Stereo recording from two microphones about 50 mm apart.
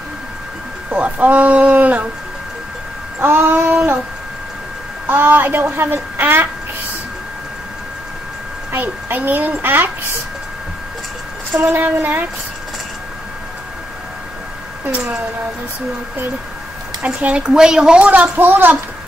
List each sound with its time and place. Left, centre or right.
0.8 s a woman's voice: right
3.2 s a woman's voice: right
5.0 s a woman's voice: right
6.1 s speech: right
8.7 s a child's voice: right
11.7 s speech: right
17.0 s a woman's voice: right
17.5 s a woman's voice: centre; by 18.8 s right